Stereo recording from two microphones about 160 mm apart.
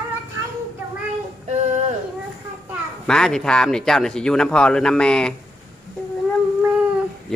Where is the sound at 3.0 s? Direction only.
5° left (ahead or behind).